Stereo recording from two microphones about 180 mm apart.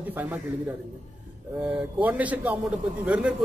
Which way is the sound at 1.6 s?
5° right (ahead or behind).